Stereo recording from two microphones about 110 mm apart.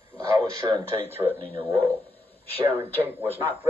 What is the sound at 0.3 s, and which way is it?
Speech, 30° right (ahead or behind).